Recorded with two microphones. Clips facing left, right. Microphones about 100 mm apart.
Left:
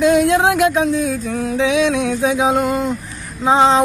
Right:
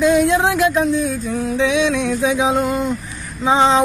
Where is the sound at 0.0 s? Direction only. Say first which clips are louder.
Left 1 dB; centre (ahead or behind).